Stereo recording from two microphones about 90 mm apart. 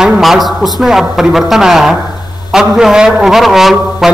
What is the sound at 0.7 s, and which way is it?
A man's voice, centre (ahead or behind).